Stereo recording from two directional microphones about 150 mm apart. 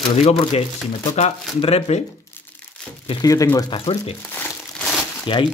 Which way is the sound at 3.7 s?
40° left (ahead or behind).